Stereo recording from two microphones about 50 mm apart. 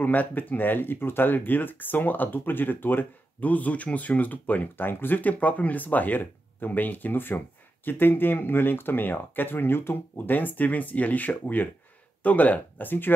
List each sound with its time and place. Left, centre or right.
0.0 s speech: left